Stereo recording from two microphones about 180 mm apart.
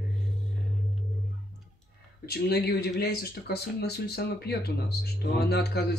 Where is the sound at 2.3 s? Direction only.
60° left (ahead or behind).